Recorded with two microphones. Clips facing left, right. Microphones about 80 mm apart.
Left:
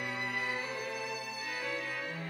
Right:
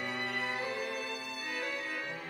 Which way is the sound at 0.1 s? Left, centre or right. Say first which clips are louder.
Even; centre.